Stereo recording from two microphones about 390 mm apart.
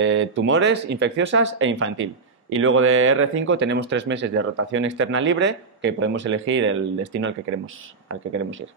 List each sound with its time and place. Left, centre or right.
0.0 s speech: right